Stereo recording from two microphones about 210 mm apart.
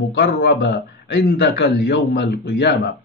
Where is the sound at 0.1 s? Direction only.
55° left (ahead or behind).